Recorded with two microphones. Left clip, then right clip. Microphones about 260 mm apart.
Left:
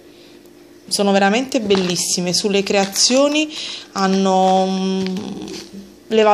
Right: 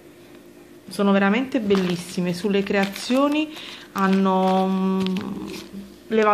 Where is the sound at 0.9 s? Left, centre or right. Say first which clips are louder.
Left 5 dB; centre.